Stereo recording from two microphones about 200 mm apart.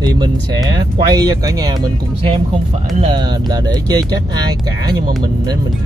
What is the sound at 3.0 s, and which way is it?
Speech, 25° right (ahead or behind).